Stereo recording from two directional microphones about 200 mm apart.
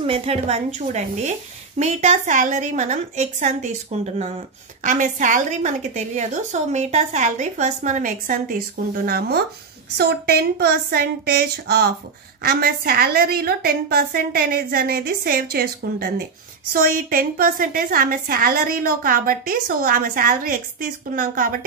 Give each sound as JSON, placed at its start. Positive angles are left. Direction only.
{"t": 0.0, "sound": "a woman's voice", "side_deg": -30}